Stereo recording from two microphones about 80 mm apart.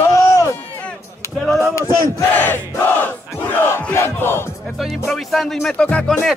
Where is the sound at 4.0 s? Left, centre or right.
Left.